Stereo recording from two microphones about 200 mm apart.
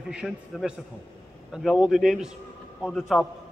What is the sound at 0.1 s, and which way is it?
A man's voice, 5° right (ahead or behind).